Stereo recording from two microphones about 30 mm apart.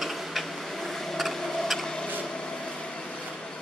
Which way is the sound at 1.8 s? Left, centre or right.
Left.